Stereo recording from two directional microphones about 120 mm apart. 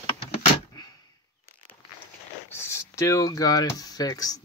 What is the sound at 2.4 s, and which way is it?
Speech, 20° left (ahead or behind).